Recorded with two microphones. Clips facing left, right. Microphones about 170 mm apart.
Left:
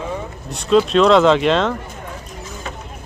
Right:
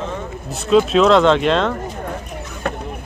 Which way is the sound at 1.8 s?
55° right (ahead or behind).